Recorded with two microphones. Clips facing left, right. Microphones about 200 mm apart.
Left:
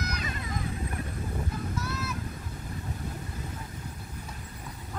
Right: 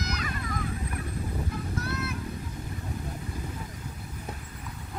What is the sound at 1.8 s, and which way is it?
Vehicle, 60° right (ahead or behind).